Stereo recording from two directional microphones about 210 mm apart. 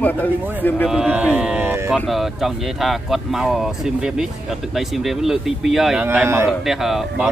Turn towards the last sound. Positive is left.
turn(degrees=0)  # may be behind; listen again after turning